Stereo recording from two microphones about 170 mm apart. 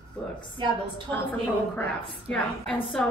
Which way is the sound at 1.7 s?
10° left (ahead or behind).